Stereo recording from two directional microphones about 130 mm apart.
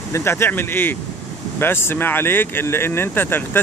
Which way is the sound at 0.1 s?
20° left (ahead or behind).